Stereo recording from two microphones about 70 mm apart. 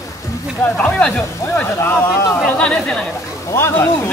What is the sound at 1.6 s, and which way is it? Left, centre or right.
Speech, left.